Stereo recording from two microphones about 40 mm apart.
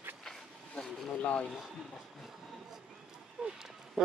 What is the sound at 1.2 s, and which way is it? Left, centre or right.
Speech, left.